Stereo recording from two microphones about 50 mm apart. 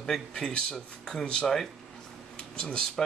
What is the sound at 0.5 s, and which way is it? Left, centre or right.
Speech, centre.